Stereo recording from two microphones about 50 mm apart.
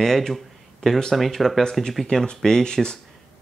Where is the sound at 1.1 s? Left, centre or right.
Centre.